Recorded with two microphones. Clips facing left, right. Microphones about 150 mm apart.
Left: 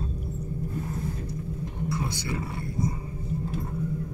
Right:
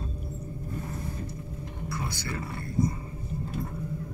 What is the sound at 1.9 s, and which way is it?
Wild animals, 20° left (ahead or behind).